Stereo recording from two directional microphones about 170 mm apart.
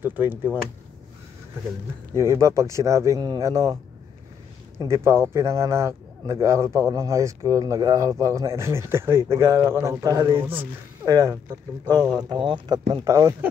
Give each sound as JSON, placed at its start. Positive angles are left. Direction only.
{"t": 0.0, "sound": "a man's voice", "side_deg": -10}
{"t": 2.1, "sound": "a man's voice", "side_deg": -15}
{"t": 4.7, "sound": "a man's voice", "side_deg": -15}